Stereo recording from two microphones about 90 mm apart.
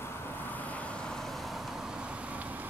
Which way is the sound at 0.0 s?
25° left (ahead or behind).